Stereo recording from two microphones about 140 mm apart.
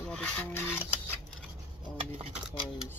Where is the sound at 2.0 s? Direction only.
45° right (ahead or behind).